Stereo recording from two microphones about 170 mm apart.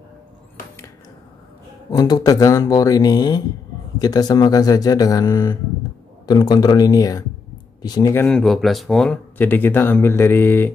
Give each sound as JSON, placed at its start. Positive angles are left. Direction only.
{"t": 1.9, "sound": "speech", "side_deg": 25}